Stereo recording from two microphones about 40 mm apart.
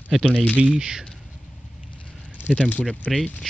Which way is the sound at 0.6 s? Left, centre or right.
Right.